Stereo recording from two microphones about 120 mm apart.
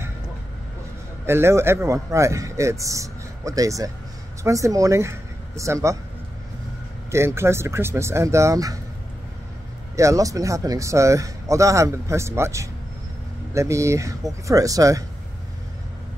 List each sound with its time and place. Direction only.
1.2 s a man's voice: 20° right (ahead or behind)
7.1 s a man's voice: 20° right (ahead or behind)
9.9 s a man's voice: 25° right (ahead or behind)